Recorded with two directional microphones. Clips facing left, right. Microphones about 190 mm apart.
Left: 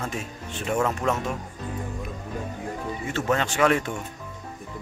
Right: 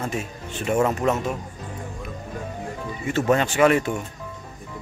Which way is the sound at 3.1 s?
15° right (ahead or behind).